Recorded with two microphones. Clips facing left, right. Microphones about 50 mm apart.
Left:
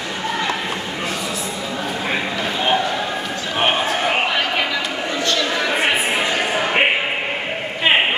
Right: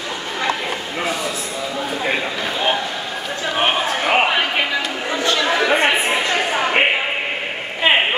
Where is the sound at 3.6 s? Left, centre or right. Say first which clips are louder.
Even; centre.